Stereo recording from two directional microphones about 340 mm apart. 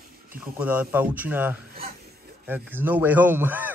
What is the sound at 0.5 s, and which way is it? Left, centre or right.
A man's voice, centre.